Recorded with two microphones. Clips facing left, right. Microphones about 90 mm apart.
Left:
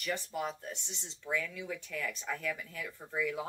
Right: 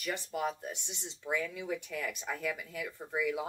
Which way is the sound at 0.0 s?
10° right (ahead or behind).